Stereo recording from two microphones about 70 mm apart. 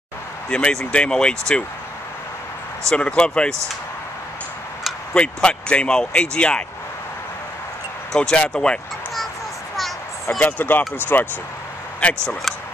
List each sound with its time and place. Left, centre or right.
0.5 s speech: centre
2.9 s speech: centre
5.1 s speech: centre
8.1 s speech: centre
10.4 s speech: left
12.0 s speech: centre